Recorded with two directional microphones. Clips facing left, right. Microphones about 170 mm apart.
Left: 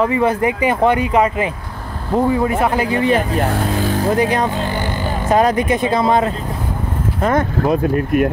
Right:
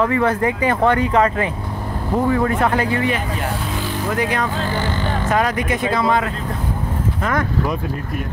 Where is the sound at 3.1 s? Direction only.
45° left (ahead or behind).